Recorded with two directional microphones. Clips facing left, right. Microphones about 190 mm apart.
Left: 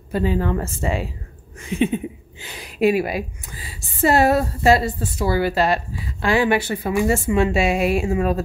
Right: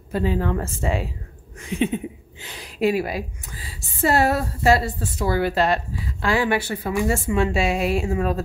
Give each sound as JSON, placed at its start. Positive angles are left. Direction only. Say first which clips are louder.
{"t": 0.1, "sound": "a woman's voice", "louder": "left 2 dB", "side_deg": 0}
{"t": 5.2, "sound": "speech", "louder": "left 1 dB", "side_deg": 5}
{"t": 6.2, "sound": "a woman's voice", "louder": "left 3 dB", "side_deg": 20}